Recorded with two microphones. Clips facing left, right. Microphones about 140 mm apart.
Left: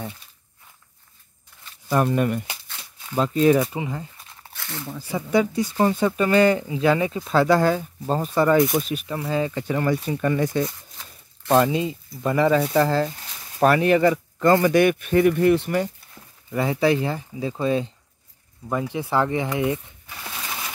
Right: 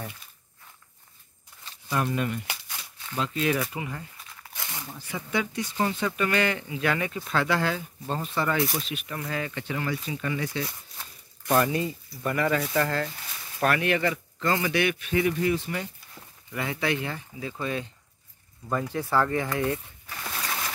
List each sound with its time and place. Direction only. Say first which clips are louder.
1.9 s speech: left 7 dB; 45° left (ahead or behind)
3.2 s speech: left 9 dB; 35° left (ahead or behind)
3.6 s a sound: left 6 dB; 25° left (ahead or behind)
5.0 s speech: left 9 dB; 35° left (ahead or behind)
9.0 s speech: left 8 dB; 25° left (ahead or behind); by 10.7 s 45° left (ahead or behind)
11.6 s speech: left 5 dB; 20° left (ahead or behind); by 15.7 s 60° left (ahead or behind)
16.5 s speech: left 8 dB; 35° left (ahead or behind)
18.7 s speech: left 3 dB; 15° left (ahead or behind)
20.2 s a sound: right 1 dB; 5° left (ahead or behind)